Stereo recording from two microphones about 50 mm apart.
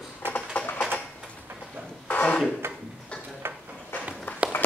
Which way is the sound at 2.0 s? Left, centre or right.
Left.